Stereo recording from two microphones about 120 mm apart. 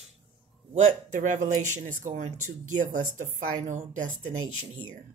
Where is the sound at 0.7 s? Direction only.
80° right.